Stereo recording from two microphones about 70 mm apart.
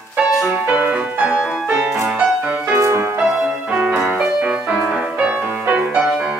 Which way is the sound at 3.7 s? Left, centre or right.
Centre.